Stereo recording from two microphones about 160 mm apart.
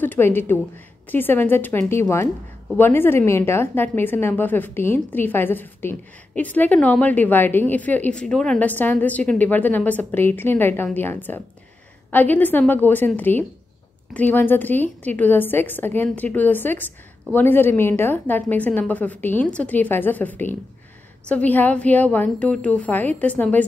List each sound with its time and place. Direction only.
0.0 s a woman's voice: 10° left (ahead or behind)